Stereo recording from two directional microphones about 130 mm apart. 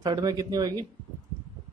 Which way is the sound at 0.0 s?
30° right (ahead or behind).